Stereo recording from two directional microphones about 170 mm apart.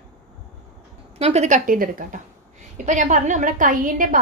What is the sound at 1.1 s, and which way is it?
A woman's voice, 40° right (ahead or behind).